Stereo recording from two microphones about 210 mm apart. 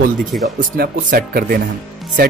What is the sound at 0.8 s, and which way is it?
Speech, 45° right (ahead or behind).